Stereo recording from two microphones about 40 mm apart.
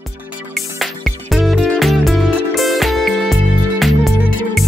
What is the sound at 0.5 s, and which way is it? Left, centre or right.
Music, centre.